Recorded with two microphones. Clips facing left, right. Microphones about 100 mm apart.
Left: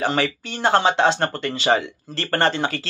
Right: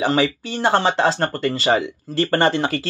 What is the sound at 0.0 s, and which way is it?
Speech, 5° right (ahead or behind).